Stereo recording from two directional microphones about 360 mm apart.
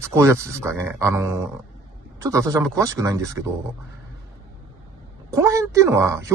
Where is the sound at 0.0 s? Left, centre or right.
Centre.